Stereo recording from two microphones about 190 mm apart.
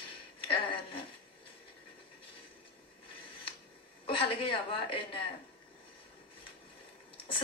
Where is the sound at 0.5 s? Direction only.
25° left (ahead or behind).